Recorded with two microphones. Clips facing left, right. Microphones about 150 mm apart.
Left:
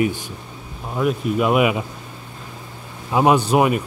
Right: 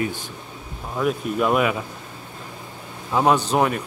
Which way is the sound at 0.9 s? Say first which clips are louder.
Left 3 dB; 5° left (ahead or behind).